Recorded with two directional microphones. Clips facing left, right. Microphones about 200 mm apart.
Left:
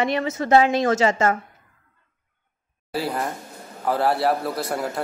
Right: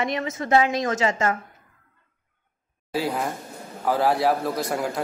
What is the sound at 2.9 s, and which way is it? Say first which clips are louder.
Speech: even; centre (ahead or behind).